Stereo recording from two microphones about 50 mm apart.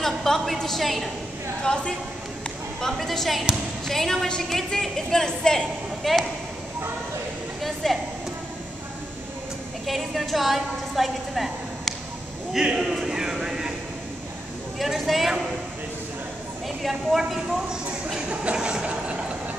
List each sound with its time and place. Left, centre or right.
0.0 s a woman's voice: centre
1.6 s a woman's voice: centre
2.8 s a woman's voice: centre
7.6 s a woman's voice: centre
9.8 s a woman's voice: centre
14.8 s a woman's voice: centre
16.6 s a woman's voice: centre
18.3 s a sound: right